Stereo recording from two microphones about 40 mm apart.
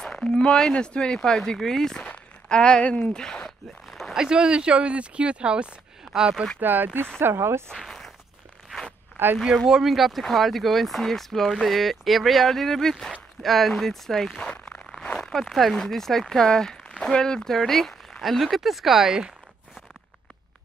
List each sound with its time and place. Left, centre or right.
0.0 s speech: centre
4.1 s speech: centre
6.1 s speech: centre
6.6 s speech: right
7.2 s speech: right
7.7 s walk: centre
9.1 s zipper: right
9.8 s speech: centre
14.4 s a sound: centre
15.2 s speech: centre
17.6 s speech: centre